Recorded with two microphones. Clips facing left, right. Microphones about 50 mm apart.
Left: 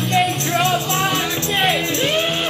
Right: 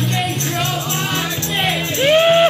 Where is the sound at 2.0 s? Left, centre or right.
Right.